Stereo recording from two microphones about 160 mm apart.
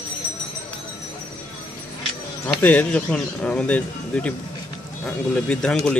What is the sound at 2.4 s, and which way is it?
Speech, 10° left (ahead or behind).